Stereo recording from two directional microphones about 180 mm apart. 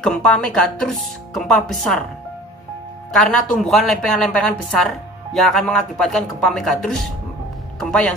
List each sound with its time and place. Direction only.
0.0 s speech: 5° left (ahead or behind)
3.2 s speech: centre (ahead or behind)
7.8 s music: 5° left (ahead or behind)